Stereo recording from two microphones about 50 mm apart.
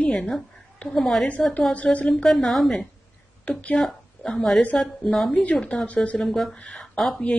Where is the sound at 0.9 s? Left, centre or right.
Centre.